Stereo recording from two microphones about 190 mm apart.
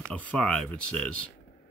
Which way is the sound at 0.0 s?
5° left (ahead or behind).